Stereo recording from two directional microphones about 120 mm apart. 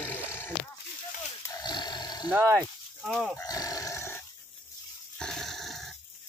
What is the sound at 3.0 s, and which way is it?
Speech, centre (ahead or behind).